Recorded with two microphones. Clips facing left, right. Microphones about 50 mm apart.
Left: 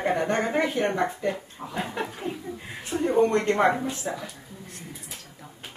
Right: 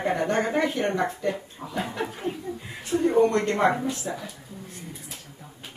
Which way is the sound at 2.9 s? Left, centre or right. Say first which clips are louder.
Right 3 dB; centre.